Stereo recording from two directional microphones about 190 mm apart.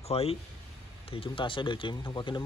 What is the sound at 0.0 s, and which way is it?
Speech, 30° left (ahead or behind).